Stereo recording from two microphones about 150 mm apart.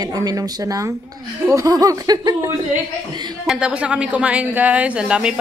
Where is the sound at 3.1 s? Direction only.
30° right (ahead or behind).